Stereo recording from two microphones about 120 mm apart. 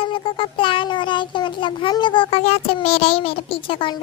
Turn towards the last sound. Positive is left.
turn(degrees=45)  # may be behind; listen again after turning